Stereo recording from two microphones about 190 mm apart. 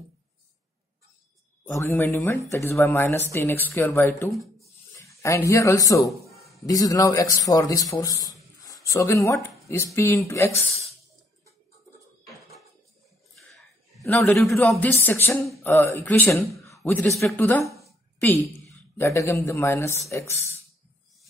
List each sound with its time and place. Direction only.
1.7 s speech: 15° left (ahead or behind)
14.0 s speech: 10° left (ahead or behind)
16.6 s a sound: 10° left (ahead or behind)
17.2 s speech: 10° left (ahead or behind)
18.9 s speech: 15° left (ahead or behind)